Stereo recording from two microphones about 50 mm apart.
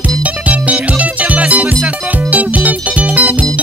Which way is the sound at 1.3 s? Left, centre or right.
Right.